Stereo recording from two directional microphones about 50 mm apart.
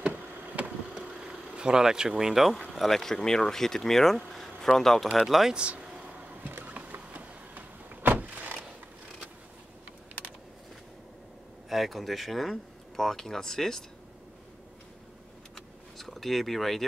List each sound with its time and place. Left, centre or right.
0.9 s vehicle: centre
1.5 s speech: centre
5.1 s speech: centre
5.5 s speech: right
6.4 s a sound: right
6.7 s power windows: right
11.7 s speech: centre
15.5 s vehicle: centre